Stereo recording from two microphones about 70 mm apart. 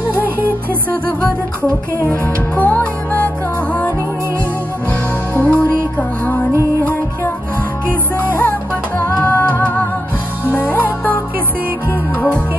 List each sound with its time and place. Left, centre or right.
2.5 s music: left
5.3 s music: left
8.4 s music: left